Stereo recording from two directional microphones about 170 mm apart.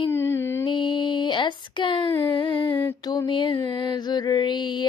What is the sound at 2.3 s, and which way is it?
Mantra, 30° left (ahead or behind).